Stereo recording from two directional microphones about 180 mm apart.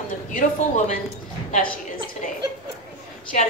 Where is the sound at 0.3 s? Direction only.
50° left (ahead or behind).